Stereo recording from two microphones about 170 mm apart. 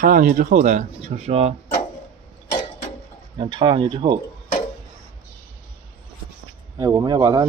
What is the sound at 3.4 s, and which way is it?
Speech, 30° right (ahead or behind).